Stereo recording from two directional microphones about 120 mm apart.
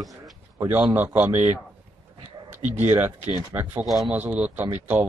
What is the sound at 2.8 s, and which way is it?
Speech, 20° right (ahead or behind).